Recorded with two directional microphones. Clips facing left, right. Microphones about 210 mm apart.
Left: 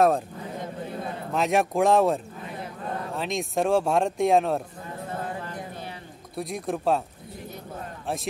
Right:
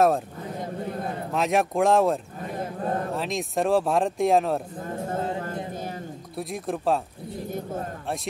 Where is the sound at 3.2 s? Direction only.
Centre (ahead or behind).